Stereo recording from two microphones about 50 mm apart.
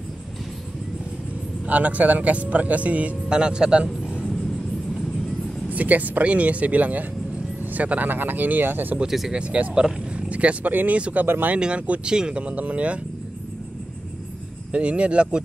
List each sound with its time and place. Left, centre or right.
1.7 s speech: right
3.3 s speech: centre
5.7 s speech: right
9.3 s speech: right
10.1 s roaring cats: right
10.7 s speech: right
11.0 s speech: right
11.2 s speech: right
11.5 s speech: right
14.7 s speech: right